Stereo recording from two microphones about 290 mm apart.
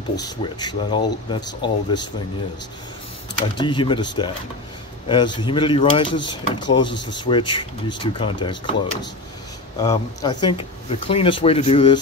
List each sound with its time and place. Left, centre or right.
0.1 s speech: centre
3.3 s speech: centre